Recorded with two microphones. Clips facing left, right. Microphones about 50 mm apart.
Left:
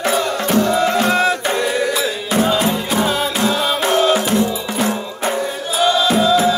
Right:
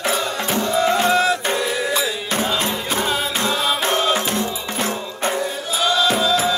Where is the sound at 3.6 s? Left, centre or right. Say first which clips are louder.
Left 2 dB; centre.